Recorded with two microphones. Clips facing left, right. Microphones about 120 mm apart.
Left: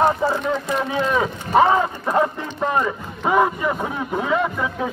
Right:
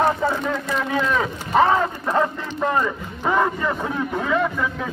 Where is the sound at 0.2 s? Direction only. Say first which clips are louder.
Left 1 dB; 20° left (ahead or behind).